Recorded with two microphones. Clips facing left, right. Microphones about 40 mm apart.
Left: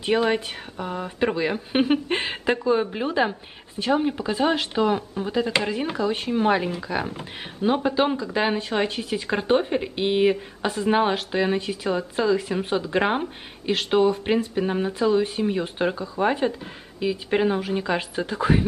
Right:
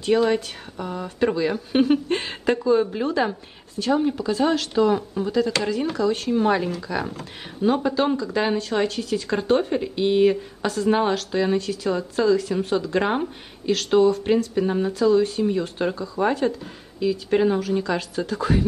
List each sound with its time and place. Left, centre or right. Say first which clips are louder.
0.0 s speech: right 2 dB; left